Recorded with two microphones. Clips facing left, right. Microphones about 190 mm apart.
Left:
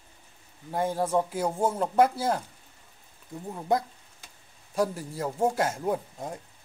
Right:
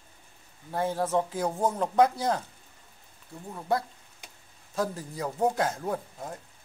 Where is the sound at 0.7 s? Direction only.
10° left (ahead or behind).